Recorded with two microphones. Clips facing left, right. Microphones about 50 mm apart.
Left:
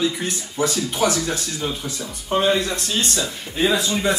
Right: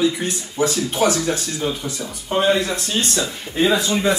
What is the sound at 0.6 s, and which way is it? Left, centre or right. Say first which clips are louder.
Speech: right 2 dB; right.